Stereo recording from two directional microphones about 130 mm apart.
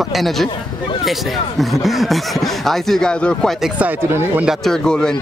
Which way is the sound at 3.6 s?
10° right (ahead or behind).